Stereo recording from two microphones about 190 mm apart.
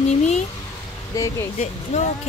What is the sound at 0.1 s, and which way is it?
Speech, 35° left (ahead or behind).